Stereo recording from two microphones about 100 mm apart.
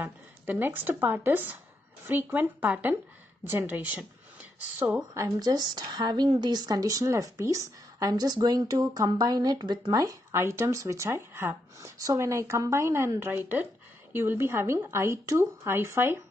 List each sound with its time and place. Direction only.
0.0 s a woman's voice: 20° right (ahead or behind)
4.9 s a woman's voice: 35° right (ahead or behind)